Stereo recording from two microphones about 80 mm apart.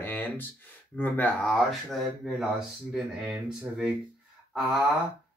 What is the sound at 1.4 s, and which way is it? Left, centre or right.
Speech, centre.